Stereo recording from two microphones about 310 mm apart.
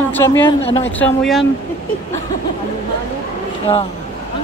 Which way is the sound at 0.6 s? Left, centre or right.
Centre.